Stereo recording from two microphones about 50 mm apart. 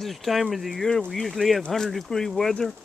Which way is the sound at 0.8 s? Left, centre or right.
Centre.